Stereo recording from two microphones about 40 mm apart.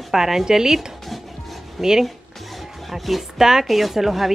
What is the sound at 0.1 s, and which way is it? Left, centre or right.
A woman's voice, centre.